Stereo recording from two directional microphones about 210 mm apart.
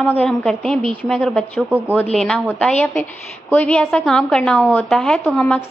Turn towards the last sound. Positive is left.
turn(degrees=5)  # may be behind; listen again after turning